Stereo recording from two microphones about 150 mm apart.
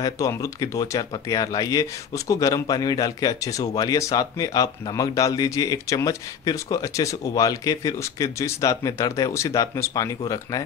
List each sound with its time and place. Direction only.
0.0 s speech: 20° left (ahead or behind)